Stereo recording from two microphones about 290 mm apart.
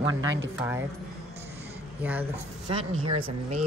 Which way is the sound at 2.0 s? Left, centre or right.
Centre.